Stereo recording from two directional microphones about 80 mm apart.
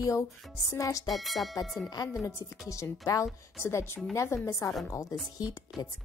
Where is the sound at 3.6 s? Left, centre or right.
Left.